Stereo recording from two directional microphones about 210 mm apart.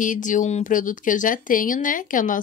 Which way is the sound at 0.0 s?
40° left (ahead or behind).